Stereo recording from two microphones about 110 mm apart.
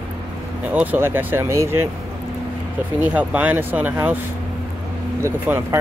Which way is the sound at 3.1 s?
15° right (ahead or behind).